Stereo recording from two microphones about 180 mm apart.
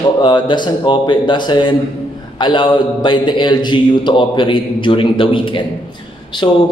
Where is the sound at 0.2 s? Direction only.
25° left (ahead or behind).